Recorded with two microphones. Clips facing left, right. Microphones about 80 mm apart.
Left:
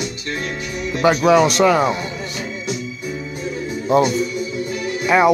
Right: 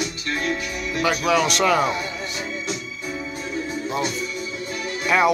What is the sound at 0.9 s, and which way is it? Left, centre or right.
Speech, left.